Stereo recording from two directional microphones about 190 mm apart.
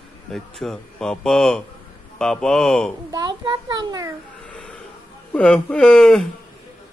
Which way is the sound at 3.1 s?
20° right (ahead or behind).